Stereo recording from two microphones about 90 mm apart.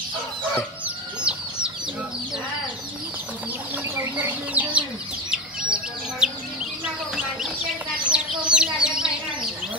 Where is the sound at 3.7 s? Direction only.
25° right (ahead or behind).